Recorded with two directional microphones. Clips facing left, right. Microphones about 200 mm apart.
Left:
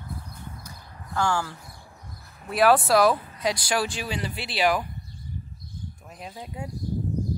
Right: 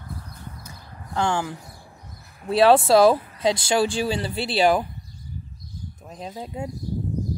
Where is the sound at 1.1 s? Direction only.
20° right (ahead or behind).